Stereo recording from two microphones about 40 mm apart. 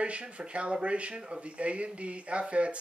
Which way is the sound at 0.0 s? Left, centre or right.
Right.